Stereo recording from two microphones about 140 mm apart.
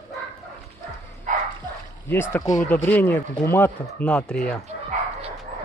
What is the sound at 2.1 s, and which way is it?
Speech, 15° left (ahead or behind).